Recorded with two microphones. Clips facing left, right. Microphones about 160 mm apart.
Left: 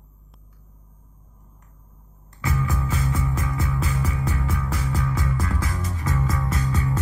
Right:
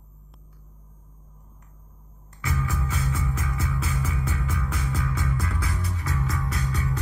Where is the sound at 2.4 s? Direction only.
40° left (ahead or behind).